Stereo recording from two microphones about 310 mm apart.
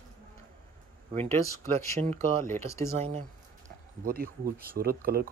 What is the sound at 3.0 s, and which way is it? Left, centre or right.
Speech, right.